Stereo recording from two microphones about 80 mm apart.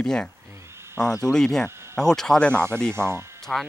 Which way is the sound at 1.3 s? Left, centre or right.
Centre.